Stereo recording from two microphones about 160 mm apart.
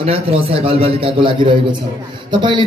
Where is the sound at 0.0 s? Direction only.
35° right (ahead or behind).